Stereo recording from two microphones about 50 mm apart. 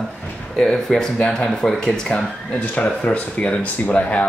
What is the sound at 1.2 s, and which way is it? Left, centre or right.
Speech, centre.